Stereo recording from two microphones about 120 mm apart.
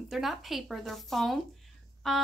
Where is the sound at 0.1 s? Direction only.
Centre (ahead or behind).